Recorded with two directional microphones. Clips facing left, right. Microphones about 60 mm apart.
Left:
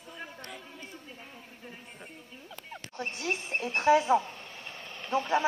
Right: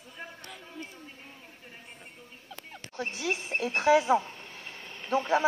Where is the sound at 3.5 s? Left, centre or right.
Centre.